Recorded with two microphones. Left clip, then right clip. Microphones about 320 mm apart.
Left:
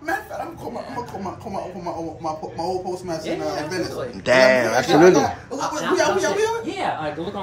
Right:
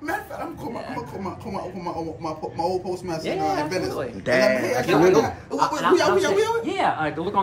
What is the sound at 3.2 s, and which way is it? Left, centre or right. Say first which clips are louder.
Speech: right 4 dB; right.